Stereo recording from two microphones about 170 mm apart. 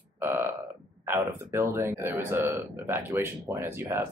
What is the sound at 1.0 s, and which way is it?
Speech, 15° right (ahead or behind).